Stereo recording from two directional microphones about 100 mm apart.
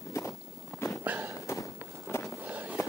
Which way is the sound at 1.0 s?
20° right (ahead or behind).